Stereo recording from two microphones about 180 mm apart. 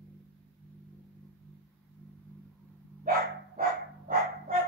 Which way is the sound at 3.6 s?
55° right (ahead or behind).